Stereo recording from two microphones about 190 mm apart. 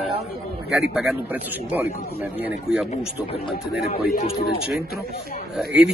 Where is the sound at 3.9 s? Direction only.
50° left (ahead or behind).